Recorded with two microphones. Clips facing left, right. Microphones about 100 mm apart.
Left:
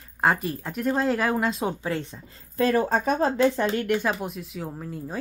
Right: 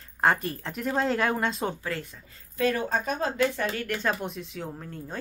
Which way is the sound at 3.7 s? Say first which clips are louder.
Left 5 dB; 15° left (ahead or behind).